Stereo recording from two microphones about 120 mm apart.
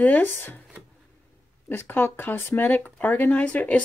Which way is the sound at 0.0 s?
15° left (ahead or behind).